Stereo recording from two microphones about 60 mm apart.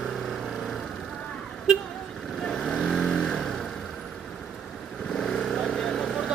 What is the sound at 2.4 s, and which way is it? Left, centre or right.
Vehicle, centre.